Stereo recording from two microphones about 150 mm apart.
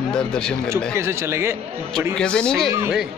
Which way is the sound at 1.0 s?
15° right (ahead or behind).